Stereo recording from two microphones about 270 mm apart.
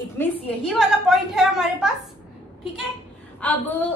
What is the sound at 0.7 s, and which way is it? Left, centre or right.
A woman's voice, centre.